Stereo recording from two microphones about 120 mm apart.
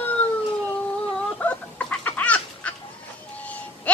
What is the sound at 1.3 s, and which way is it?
Chicken, 10° left (ahead or behind).